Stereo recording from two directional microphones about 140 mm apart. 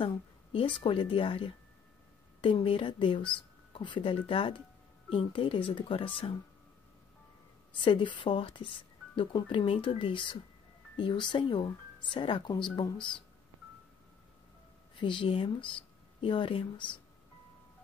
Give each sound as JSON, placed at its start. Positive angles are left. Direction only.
{"t": 0.0, "sound": "speech", "side_deg": 40}
{"t": 7.8, "sound": "speech", "side_deg": 35}
{"t": 15.0, "sound": "speech", "side_deg": 35}